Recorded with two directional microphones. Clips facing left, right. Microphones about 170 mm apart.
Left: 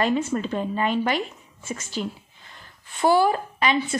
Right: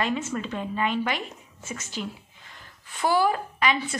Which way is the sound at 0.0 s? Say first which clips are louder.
Left 5 dB; 35° left (ahead or behind).